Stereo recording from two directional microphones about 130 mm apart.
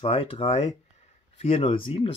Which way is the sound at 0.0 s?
45° left (ahead or behind).